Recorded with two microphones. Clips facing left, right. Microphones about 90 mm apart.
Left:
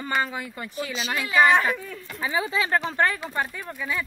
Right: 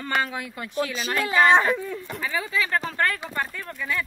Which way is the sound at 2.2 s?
20° left (ahead or behind).